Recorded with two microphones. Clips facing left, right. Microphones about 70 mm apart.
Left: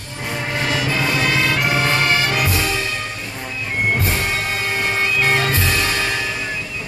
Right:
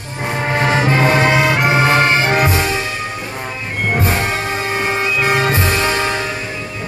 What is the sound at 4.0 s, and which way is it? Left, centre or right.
Music, right.